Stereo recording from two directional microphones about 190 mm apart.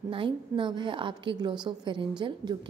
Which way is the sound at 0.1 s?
25° right (ahead or behind).